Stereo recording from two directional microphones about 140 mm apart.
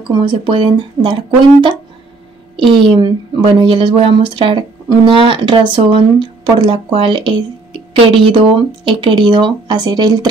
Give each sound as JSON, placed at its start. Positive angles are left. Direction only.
{"t": 0.1, "sound": "speech", "side_deg": -35}
{"t": 2.5, "sound": "speech", "side_deg": -35}